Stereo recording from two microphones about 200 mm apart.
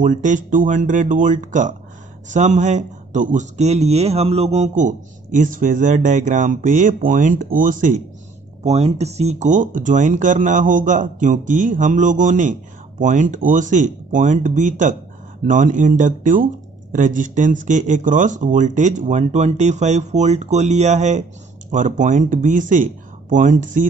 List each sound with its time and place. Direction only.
0.0 s speech: 40° right (ahead or behind)